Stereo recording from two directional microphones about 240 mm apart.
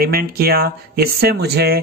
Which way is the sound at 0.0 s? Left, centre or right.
Right.